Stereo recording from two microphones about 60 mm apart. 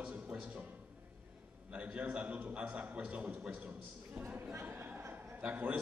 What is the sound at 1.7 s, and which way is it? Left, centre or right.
A man's voice, right.